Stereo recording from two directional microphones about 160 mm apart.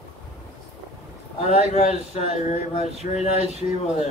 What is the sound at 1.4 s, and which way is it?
A man's voice, 45° left (ahead or behind).